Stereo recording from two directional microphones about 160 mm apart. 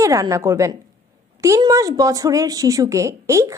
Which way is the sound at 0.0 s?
20° right (ahead or behind).